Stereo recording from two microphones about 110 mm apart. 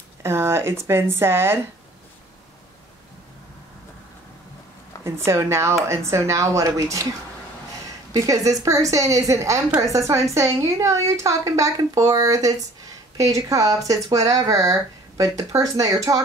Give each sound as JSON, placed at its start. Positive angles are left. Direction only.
{"t": 0.2, "sound": "a woman's voice", "side_deg": -25}
{"t": 5.0, "sound": "a woman's voice", "side_deg": -25}
{"t": 8.1, "sound": "a woman's voice", "side_deg": -30}